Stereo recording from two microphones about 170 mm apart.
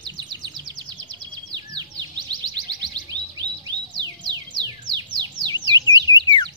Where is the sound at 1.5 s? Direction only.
25° right (ahead or behind).